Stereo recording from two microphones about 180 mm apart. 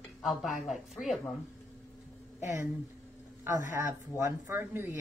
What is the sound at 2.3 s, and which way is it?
Speech, 15° right (ahead or behind).